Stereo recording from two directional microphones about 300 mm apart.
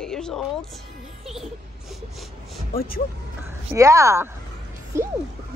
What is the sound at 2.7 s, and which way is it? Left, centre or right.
Speech, left.